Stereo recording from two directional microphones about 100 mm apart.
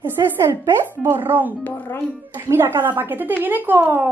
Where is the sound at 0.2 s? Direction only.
40° right (ahead or behind).